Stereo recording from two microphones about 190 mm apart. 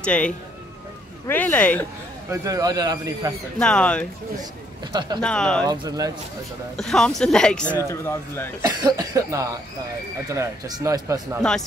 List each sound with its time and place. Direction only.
0.0 s speech: 5° left (ahead or behind)
2.2 s a man's voice: 15° right (ahead or behind)
3.5 s speech: 5° left (ahead or behind)
4.9 s a man's voice: 20° right (ahead or behind)
5.2 s speech: 5° left (ahead or behind)
5.7 s a man's voice: 20° right (ahead or behind)
6.8 s speech: centre (ahead or behind)
8.6 s speech: 20° right (ahead or behind)